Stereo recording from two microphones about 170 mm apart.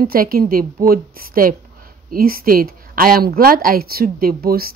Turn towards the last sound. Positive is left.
turn(degrees=-65)  # may be behind; listen again after turning